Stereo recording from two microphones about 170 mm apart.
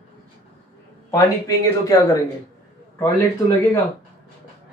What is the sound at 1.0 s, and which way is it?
Speech, 20° left (ahead or behind).